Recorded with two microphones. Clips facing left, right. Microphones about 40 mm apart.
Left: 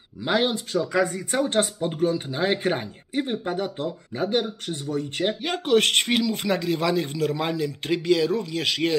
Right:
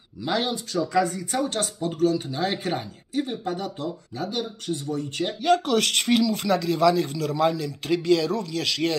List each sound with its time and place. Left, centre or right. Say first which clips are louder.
0.2 s speech: left 3 dB; left
5.4 s speech: right 2 dB; left